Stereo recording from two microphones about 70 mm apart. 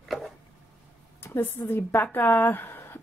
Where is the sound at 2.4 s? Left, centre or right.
Left.